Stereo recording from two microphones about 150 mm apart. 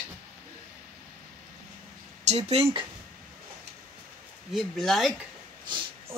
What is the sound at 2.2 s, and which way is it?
Speech, 45° right (ahead or behind).